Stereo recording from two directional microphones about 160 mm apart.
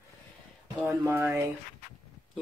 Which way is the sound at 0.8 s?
20° right (ahead or behind).